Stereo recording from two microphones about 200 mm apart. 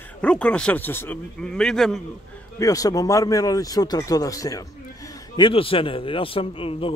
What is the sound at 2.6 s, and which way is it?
A man's voice, 15° left (ahead or behind).